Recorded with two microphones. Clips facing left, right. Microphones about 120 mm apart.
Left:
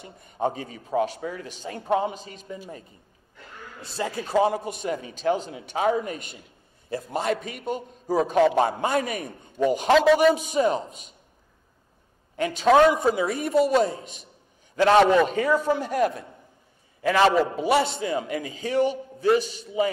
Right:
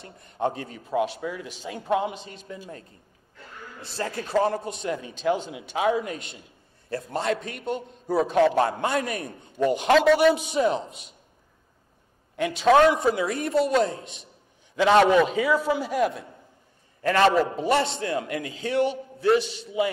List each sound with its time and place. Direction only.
0.0 s a man's voice: 5° left (ahead or behind)
3.8 s a man's voice: 20° left (ahead or behind); by 6.1 s centre (ahead or behind)
6.9 s a man's voice: 10° left (ahead or behind)
12.4 s a man's voice: centre (ahead or behind)
17.0 s a man's voice: 10° left (ahead or behind)